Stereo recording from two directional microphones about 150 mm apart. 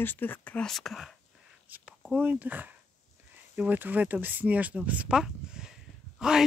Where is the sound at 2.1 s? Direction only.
10° right (ahead or behind).